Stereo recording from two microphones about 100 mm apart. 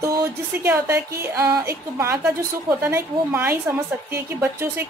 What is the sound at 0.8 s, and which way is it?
A woman's voice, 25° right (ahead or behind).